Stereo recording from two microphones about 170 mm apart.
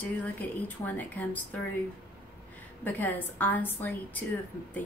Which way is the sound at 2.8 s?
10° left (ahead or behind).